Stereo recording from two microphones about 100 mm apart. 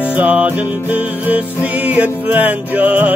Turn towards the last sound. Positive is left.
turn(degrees=-15)  # may be behind; listen again after turning